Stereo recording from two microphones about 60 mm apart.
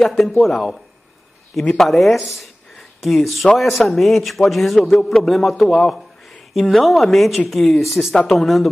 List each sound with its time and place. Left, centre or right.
0.0 s a man's voice: centre
2.7 s a sound: centre
3.5 s a man's voice: centre